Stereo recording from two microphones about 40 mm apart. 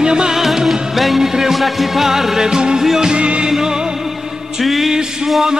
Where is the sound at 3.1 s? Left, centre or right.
Right.